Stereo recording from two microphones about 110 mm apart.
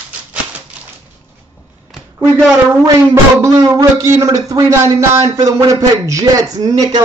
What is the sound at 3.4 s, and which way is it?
Speech, 35° right (ahead or behind).